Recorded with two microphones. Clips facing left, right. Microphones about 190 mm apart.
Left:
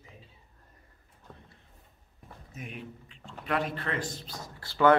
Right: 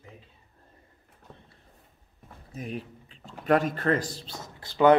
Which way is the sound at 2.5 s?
35° right (ahead or behind).